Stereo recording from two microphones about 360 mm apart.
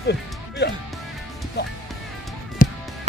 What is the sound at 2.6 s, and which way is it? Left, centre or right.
Music, left.